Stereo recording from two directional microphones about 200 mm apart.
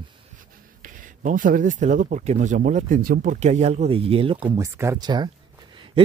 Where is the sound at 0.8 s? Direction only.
40° right (ahead or behind).